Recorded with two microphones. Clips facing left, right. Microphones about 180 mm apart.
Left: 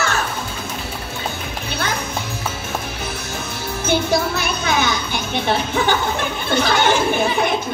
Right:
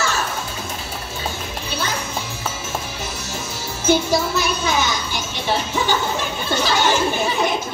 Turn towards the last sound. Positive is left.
turn(degrees=60)  # may be behind; listen again after turning